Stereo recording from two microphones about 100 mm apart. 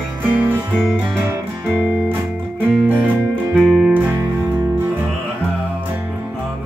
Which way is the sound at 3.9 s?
15° right (ahead or behind).